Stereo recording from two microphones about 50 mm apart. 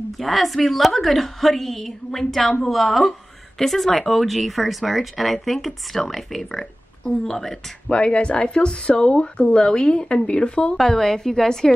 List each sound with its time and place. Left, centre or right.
0.2 s a woman's voice: centre
7.9 s speech: left
10.8 s a woman's voice: centre